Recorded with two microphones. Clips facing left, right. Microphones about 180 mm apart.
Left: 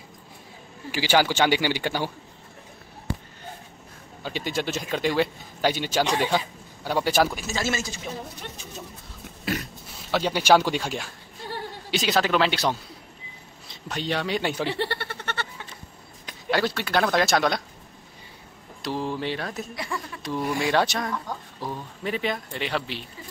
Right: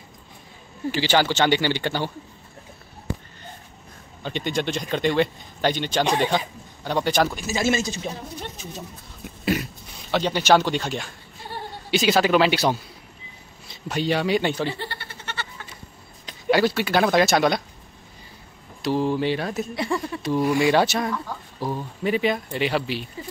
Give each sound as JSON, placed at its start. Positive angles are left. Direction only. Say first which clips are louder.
{"t": 0.9, "sound": "a man's voice", "louder": "even", "side_deg": 10}
{"t": 4.2, "sound": "a man's voice", "louder": "right 3 dB", "side_deg": 5}
{"t": 7.4, "sound": "speech", "louder": "right 5 dB", "side_deg": -15}
{"t": 9.4, "sound": "a sound", "louder": "right 5 dB", "side_deg": -15}
{"t": 10.1, "sound": "a man's voice", "louder": "right 1 dB", "side_deg": 10}
{"t": 14.7, "sound": "a sound", "louder": "left 4 dB", "side_deg": 70}
{"t": 16.4, "sound": "speech", "louder": "right 5 dB", "side_deg": -5}
{"t": 18.8, "sound": "speech", "louder": "right 6 dB", "side_deg": 0}
{"t": 19.7, "sound": "speech", "louder": "right 7 dB", "side_deg": -25}
{"t": 20.2, "sound": "speech", "louder": "right 6 dB", "side_deg": -5}